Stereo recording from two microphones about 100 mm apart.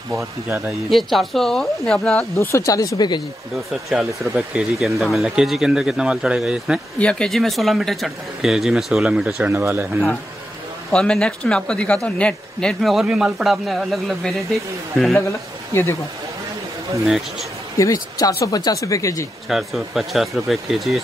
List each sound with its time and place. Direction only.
0.1 s speech: 30° right (ahead or behind)
0.8 s speech: centre (ahead or behind)
2.3 s speech: 30° left (ahead or behind)
3.9 s speech: centre (ahead or behind)
7.0 s speech: 10° left (ahead or behind); by 9.3 s 10° right (ahead or behind)
9.5 s speech: 25° right (ahead or behind)
10.9 s speech: 5° left (ahead or behind)
13.0 s speech: 5° right (ahead or behind)
15.7 s speech: 25° left (ahead or behind)
17.0 s speech: centre (ahead or behind)
17.7 s speech: 35° left (ahead or behind)
19.5 s speech: centre (ahead or behind)